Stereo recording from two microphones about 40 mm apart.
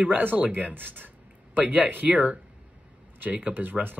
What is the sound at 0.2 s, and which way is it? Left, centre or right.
Speech, right.